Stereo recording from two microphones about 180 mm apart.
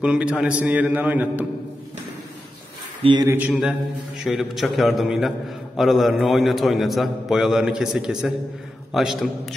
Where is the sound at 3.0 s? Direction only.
25° right (ahead or behind).